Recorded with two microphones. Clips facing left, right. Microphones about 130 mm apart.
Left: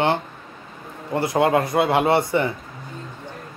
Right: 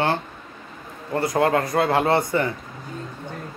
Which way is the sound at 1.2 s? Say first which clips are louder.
Left 1 dB; 25° left (ahead or behind).